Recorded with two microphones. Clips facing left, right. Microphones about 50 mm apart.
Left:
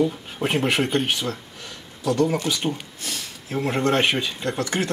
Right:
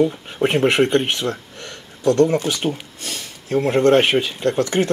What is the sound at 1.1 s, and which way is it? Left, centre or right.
Speech, right.